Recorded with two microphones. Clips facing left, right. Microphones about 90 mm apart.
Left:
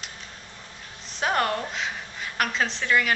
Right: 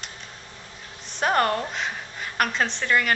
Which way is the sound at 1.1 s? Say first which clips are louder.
Right 3 dB; centre (ahead or behind).